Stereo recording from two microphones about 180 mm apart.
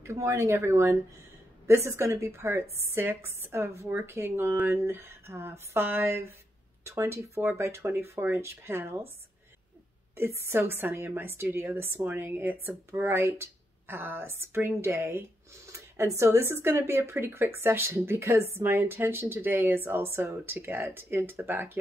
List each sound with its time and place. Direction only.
0.0 s speech: 15° right (ahead or behind)
10.1 s a woman's voice: 10° right (ahead or behind)